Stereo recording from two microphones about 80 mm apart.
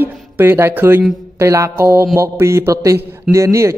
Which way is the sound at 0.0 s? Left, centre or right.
Right.